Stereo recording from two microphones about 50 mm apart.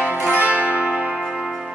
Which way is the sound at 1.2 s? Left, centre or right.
Centre.